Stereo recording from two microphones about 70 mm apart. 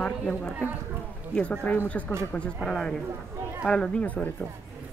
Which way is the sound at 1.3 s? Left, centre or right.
Centre.